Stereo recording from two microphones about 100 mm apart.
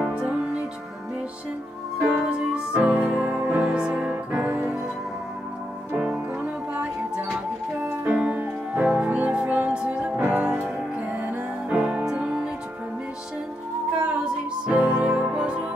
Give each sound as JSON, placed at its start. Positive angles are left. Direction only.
{"t": 0.0, "sound": "music", "side_deg": -10}
{"t": 2.1, "sound": "music", "side_deg": -10}
{"t": 5.9, "sound": "music", "side_deg": -10}
{"t": 11.7, "sound": "music", "side_deg": -5}
{"t": 14.0, "sound": "music", "side_deg": -10}